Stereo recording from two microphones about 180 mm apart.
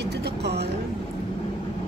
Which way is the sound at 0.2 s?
65° right (ahead or behind).